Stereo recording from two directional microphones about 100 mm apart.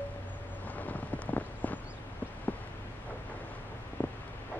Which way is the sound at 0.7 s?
15° left (ahead or behind).